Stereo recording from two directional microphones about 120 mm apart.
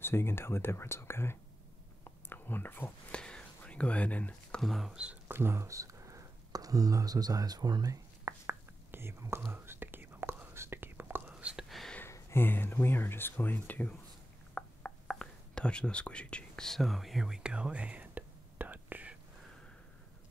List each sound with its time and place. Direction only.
0.0 s speech: 20° left (ahead or behind); by 5.4 s 10° right (ahead or behind)
5.4 s a sound: 25° right (ahead or behind)
9.5 s whispering: 20° right (ahead or behind)
11.7 s a sound: centre (ahead or behind)
12.0 s speech: 20° left (ahead or behind)
14.5 s whispering: 10° left (ahead or behind); by 19.1 s 15° right (ahead or behind)